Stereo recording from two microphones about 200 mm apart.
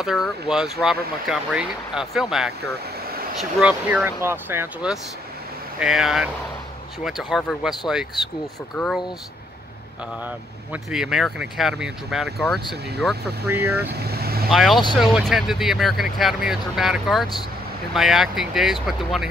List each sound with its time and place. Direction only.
0.0 s speech: centre (ahead or behind)
8.7 s speech: 5° left (ahead or behind)
10.2 s speech: 5° right (ahead or behind)
13.5 s speech: 10° right (ahead or behind)
13.9 s vehicle: 50° right (ahead or behind)
14.5 s speech: centre (ahead or behind)